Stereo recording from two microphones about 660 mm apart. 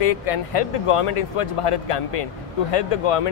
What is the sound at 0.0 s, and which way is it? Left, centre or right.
Speech, left.